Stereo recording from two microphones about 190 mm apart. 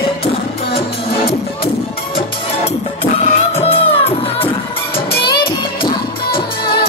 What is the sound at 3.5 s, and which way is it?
Music, 30° left (ahead or behind).